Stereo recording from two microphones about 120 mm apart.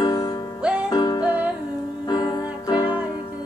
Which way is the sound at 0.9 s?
35° left (ahead or behind).